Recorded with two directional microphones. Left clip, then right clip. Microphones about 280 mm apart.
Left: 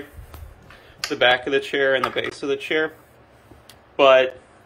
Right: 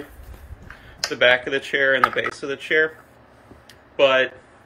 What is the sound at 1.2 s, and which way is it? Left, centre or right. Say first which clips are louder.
Speech: even; centre.